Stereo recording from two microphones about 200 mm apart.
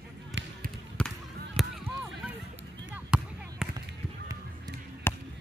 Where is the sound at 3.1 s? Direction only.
5° right (ahead or behind).